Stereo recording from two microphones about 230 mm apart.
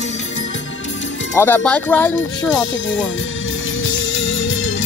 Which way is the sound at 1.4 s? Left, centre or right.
Centre.